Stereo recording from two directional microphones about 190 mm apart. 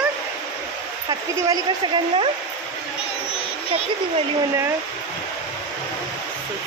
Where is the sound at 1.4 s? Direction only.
25° right (ahead or behind).